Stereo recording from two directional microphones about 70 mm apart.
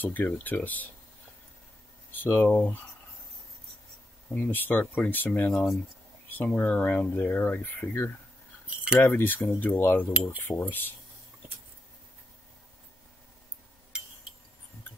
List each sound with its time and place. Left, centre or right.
0.0 s speech: left
2.3 s speech: left
4.3 s speech: left
5.5 s speech: centre
6.3 s speech: left
8.6 s cutlery: centre
9.0 s speech: left